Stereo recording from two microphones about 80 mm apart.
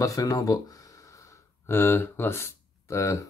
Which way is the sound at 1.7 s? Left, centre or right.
Left.